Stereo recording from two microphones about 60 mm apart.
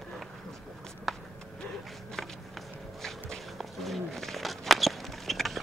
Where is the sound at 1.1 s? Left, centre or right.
Centre.